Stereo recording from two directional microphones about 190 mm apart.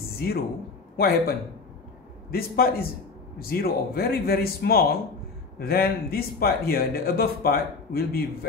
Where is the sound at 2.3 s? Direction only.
50° left (ahead or behind).